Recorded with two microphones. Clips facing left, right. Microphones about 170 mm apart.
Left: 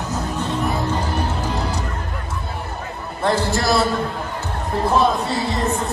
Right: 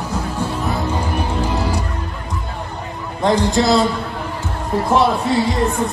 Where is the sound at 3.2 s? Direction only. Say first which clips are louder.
Right 4 dB; 15° right (ahead or behind).